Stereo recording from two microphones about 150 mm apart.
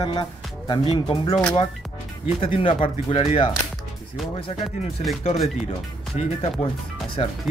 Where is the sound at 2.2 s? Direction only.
40° left (ahead or behind).